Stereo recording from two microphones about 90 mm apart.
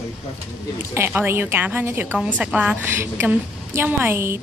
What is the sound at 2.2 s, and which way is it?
Speech, 10° right (ahead or behind).